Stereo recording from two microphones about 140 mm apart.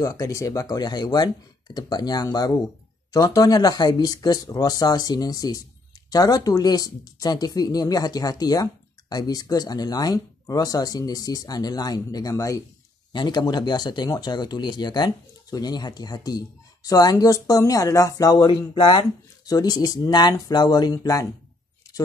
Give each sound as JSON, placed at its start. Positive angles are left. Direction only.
{"t": 0.0, "sound": "speech", "side_deg": 25}